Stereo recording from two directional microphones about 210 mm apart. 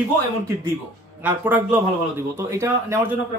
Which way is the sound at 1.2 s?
10° right (ahead or behind).